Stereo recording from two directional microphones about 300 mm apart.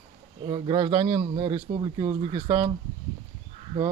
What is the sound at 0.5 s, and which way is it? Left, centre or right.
Speech, centre.